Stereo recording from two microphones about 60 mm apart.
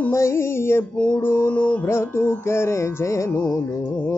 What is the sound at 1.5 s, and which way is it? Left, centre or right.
Music, left.